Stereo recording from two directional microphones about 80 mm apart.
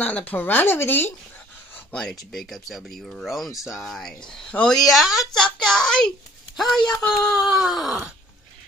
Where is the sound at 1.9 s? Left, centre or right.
Centre.